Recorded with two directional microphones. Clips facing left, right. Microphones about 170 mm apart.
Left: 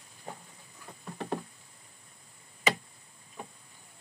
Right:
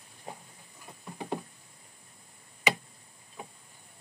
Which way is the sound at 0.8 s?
10° right (ahead or behind).